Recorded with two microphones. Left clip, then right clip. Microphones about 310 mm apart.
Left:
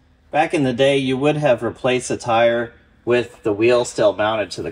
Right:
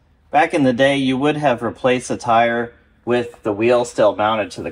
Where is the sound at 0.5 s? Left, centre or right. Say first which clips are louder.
Right 1 dB; centre.